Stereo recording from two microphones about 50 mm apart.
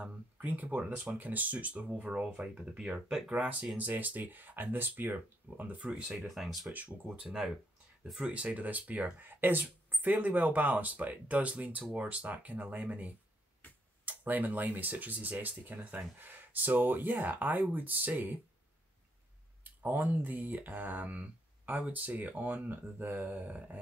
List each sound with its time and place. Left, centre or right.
0.0 s speech: right
2.1 s speech: centre
3.3 s speech: right
6.1 s speech: centre
8.3 s speech: right
19.6 s speech: right